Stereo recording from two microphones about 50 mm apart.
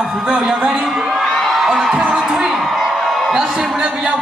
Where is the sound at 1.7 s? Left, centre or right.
Centre.